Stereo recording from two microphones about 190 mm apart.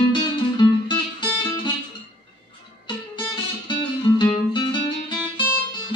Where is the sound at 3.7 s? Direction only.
25° left (ahead or behind).